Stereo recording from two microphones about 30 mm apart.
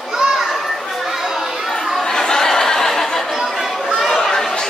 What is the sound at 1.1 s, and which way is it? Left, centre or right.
Chatter, centre.